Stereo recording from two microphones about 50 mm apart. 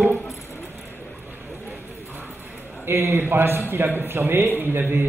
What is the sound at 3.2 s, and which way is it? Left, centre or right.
A man's voice, right.